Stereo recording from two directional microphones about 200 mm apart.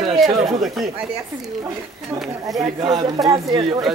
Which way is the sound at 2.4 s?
20° right (ahead or behind).